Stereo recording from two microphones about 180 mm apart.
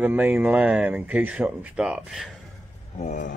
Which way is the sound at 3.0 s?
45° left (ahead or behind).